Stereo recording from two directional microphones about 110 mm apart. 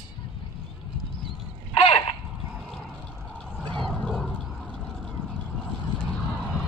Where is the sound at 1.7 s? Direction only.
60° left (ahead or behind).